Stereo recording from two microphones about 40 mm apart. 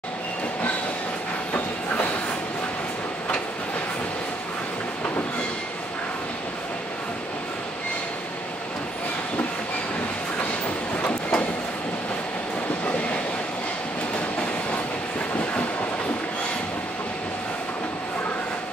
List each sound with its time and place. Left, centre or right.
11.0 s train: left